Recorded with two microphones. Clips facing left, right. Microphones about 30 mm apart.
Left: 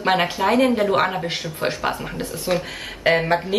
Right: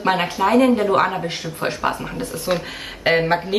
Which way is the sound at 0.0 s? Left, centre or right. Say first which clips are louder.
Even; centre.